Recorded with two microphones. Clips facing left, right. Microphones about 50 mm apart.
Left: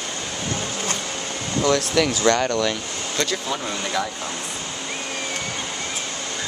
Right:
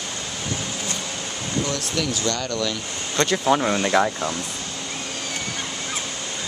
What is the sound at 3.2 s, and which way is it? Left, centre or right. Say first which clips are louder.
Speech: right 7 dB; right.